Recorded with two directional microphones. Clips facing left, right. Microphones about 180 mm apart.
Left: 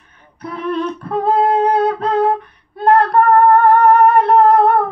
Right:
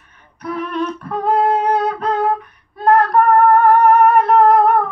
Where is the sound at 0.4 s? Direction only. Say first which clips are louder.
Left 1 dB; 30° left (ahead or behind).